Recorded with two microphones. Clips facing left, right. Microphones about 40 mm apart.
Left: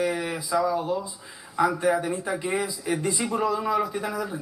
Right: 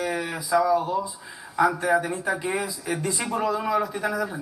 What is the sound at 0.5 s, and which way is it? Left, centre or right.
Speech, right.